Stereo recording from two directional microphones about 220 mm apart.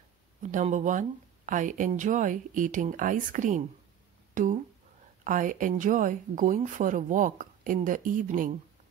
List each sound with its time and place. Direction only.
0.4 s speech: 35° right (ahead or behind)
4.3 s a sound: 35° right (ahead or behind)
5.2 s speech: 35° right (ahead or behind)